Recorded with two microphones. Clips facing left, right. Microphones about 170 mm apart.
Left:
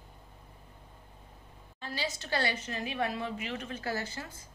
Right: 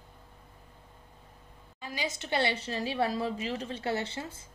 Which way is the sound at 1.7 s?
15° right (ahead or behind).